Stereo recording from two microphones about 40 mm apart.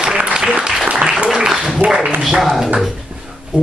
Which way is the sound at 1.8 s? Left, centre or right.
Right.